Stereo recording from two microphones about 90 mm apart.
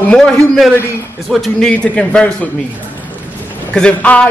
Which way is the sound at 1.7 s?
10° left (ahead or behind).